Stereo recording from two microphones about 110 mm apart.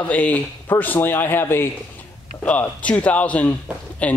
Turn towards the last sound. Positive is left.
turn(degrees=10)  # may be behind; listen again after turning